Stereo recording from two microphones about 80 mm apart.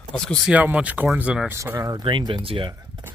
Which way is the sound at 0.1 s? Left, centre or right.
Centre.